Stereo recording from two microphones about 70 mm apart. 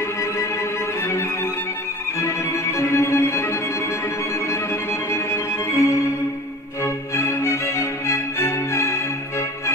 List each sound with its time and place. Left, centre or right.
2.1 s music: left
5.1 s violin: left
6.8 s music: left